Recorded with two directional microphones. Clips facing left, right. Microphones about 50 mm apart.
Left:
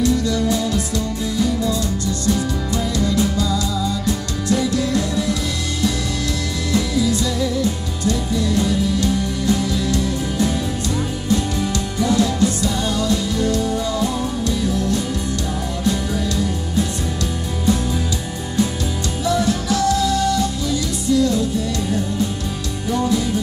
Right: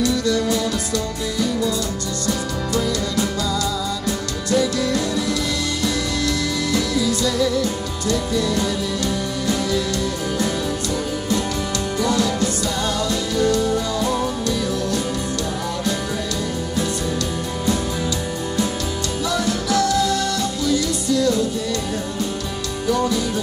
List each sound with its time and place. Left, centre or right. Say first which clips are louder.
2.3 s music: left 1 dB; left
8.1 s music: even; left
12.0 s music: left 3 dB; left
12.9 s music: left 1 dB; right
19.2 s music: left 4 dB; left